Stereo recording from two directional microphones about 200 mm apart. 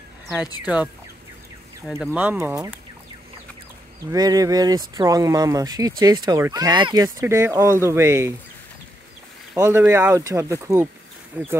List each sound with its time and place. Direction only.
0.7 s speech: 5° right (ahead or behind)
1.9 s speech: centre (ahead or behind)
2.1 s speech: 10° right (ahead or behind)
4.1 s speech: 20° right (ahead or behind)
9.6 s speech: 15° right (ahead or behind)